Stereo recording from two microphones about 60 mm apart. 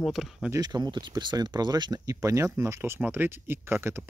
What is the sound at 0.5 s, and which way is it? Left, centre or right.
Speech, right.